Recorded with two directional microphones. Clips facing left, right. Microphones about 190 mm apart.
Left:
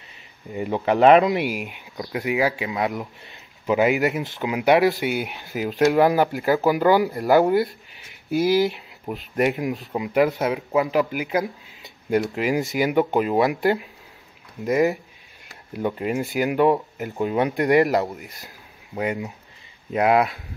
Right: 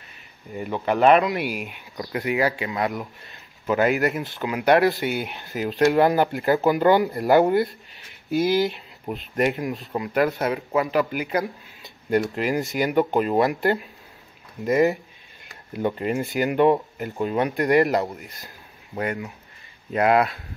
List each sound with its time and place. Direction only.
0.6 s speech: 25° left (ahead or behind)
2.0 s speech: 5° left (ahead or behind)
4.2 s speech: 15° left (ahead or behind)
17.8 s speech: centre (ahead or behind)
18.9 s speech: 15° left (ahead or behind)